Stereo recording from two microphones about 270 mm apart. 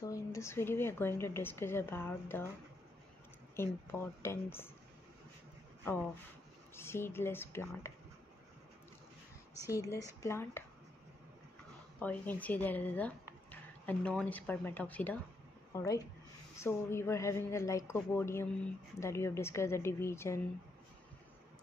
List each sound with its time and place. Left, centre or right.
0.0 s a woman's voice: centre
3.5 s a woman's voice: centre
6.7 s a woman's voice: centre
9.7 s a woman's voice: centre
12.0 s a woman's voice: centre